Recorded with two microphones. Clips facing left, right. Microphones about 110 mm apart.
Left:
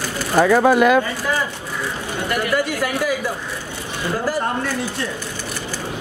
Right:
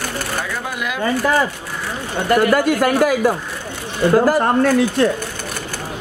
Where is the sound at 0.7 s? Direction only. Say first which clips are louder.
Left 12 dB; 45° left (ahead or behind).